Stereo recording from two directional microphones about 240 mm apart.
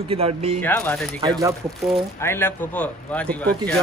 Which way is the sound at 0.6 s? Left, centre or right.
Centre.